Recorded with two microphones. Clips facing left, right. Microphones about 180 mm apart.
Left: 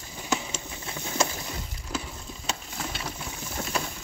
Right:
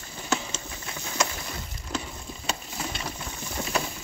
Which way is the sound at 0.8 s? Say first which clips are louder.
Left 2 dB; 25° left (ahead or behind).